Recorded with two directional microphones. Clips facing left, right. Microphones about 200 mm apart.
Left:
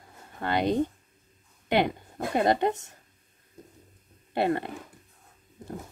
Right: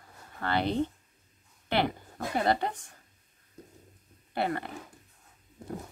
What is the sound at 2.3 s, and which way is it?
Speech, 20° left (ahead or behind).